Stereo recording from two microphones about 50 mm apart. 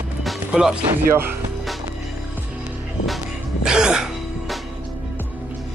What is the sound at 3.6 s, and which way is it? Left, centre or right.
Music, centre.